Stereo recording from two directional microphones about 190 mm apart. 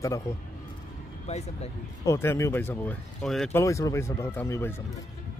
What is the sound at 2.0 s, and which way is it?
Speech, 15° left (ahead or behind).